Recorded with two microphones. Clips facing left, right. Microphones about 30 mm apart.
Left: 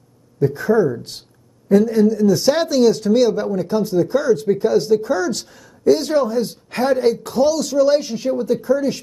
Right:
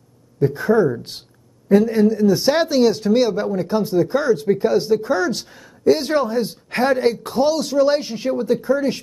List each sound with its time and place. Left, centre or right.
0.7 s speech: right
2.3 s speech: centre